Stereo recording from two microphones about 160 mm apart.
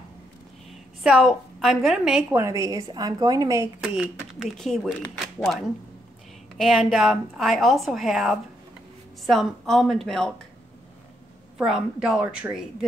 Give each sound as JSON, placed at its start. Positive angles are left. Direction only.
{"t": 1.0, "sound": "a woman's voice", "side_deg": -5}
{"t": 2.3, "sound": "a woman's voice", "side_deg": -20}
{"t": 3.9, "sound": "a woman's voice", "side_deg": -5}
{"t": 6.6, "sound": "a woman's voice", "side_deg": 0}
{"t": 11.5, "sound": "a woman's voice", "side_deg": -5}